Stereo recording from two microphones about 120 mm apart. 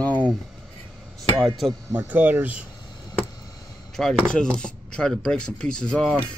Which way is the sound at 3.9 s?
5° left (ahead or behind).